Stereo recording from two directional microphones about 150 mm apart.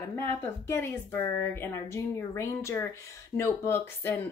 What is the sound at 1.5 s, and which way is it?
Speech, 15° left (ahead or behind).